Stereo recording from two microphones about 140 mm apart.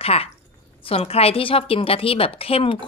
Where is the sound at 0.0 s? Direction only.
45° left (ahead or behind).